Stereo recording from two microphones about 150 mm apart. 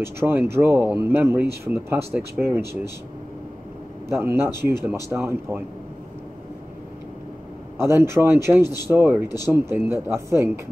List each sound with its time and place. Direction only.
0.0 s speech: 15° right (ahead or behind)
4.1 s speech: 15° right (ahead or behind)
7.8 s speech: 15° right (ahead or behind)